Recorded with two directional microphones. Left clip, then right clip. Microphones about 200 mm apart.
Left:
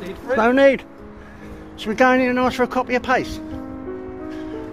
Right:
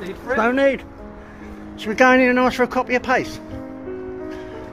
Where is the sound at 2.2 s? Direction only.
5° right (ahead or behind).